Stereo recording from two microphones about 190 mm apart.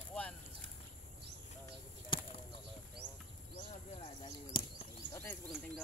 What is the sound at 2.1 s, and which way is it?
Chop, 25° left (ahead or behind).